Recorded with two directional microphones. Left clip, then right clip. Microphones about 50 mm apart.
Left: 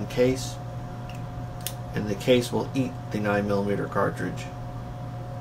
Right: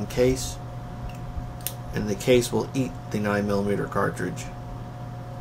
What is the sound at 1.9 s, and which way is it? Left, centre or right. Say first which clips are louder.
Speech: right 1 dB; right.